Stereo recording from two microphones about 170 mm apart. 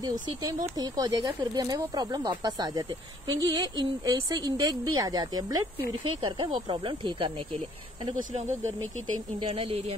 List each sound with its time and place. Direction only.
0.0 s speech: 20° right (ahead or behind)
8.2 s speech: 45° right (ahead or behind)
9.4 s speech: 30° right (ahead or behind)